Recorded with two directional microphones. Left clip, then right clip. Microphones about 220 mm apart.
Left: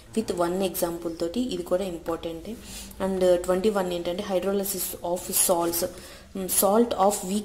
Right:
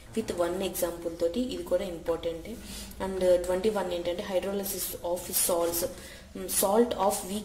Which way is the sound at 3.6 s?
30° left (ahead or behind).